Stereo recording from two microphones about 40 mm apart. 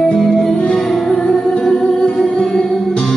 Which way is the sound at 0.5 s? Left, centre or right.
Left.